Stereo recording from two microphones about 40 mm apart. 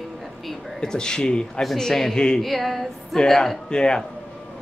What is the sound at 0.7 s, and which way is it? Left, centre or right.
Speech, centre.